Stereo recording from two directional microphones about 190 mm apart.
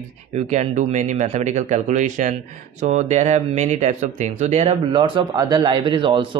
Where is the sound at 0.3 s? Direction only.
35° right (ahead or behind).